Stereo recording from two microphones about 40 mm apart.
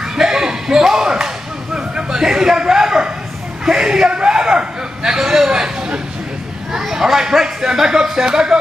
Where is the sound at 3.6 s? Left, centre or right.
Centre.